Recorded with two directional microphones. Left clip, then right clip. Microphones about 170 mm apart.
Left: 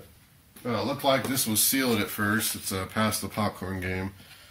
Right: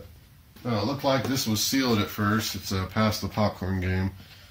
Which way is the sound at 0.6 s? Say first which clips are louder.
Even; 10° right (ahead or behind).